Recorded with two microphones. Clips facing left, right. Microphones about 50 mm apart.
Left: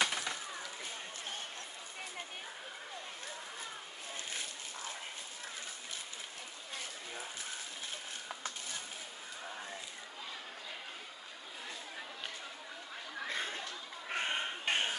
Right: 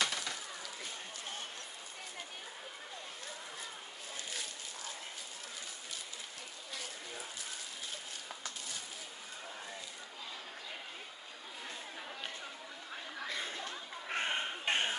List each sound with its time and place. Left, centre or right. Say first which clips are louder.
0.0 s a sound: left 2 dB; left
13.3 s chuckle: left 3 dB; left
14.0 s crow: even; centre